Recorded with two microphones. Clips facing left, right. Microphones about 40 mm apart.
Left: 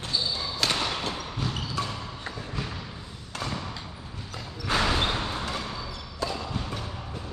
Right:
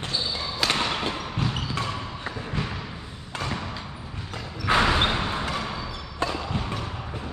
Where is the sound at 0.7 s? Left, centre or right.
Right.